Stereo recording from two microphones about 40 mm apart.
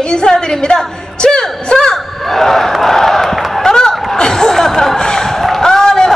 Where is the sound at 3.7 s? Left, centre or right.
Centre.